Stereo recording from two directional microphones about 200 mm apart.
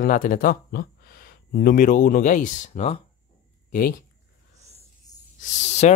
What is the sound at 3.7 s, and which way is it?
Speech, 45° left (ahead or behind).